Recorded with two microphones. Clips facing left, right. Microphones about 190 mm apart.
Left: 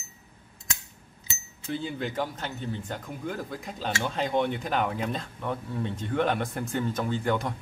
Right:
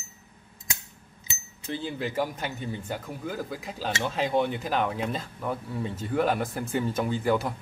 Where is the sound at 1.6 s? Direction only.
Centre (ahead or behind).